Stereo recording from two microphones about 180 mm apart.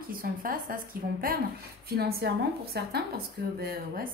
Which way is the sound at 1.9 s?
60° right (ahead or behind).